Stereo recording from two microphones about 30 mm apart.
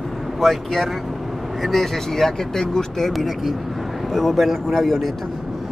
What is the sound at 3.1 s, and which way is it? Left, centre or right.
Speech, centre.